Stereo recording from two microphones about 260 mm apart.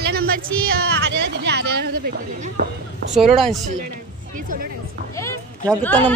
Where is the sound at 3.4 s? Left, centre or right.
Right.